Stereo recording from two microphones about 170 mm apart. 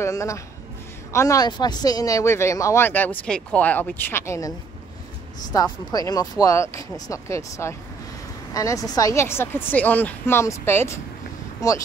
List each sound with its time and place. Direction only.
0.0 s speech: 20° left (ahead or behind)